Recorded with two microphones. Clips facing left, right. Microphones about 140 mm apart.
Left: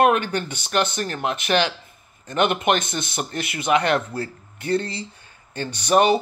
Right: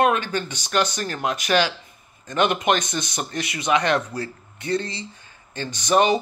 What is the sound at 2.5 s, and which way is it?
Speech, 5° left (ahead or behind).